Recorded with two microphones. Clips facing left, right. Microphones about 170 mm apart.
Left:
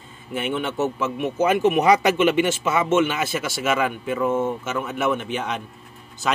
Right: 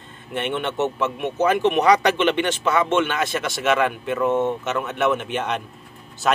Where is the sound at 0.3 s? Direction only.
5° left (ahead or behind).